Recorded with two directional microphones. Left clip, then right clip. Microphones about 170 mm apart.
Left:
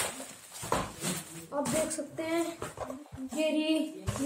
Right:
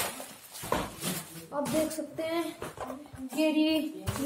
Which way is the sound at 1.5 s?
10° right (ahead or behind).